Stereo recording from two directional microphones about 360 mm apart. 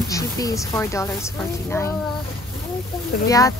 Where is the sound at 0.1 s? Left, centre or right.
Centre.